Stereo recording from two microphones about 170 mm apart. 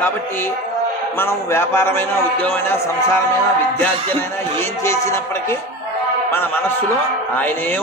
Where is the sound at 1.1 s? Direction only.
15° left (ahead or behind).